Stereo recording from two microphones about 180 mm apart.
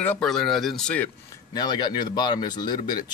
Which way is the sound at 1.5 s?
25° left (ahead or behind).